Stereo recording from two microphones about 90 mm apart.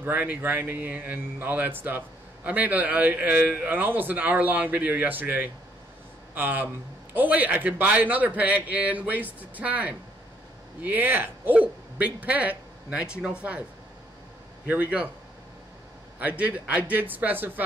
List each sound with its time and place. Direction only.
0.0 s a man's voice: 20° right (ahead or behind)
14.7 s speech: 15° right (ahead or behind)
16.2 s speech: 15° right (ahead or behind)